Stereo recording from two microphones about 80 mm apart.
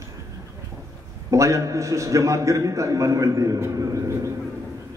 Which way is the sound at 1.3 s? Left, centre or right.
Right.